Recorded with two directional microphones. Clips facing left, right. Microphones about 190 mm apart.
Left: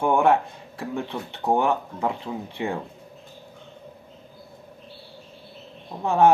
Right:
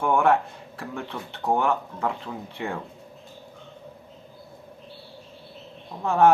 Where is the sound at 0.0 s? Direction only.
20° left (ahead or behind).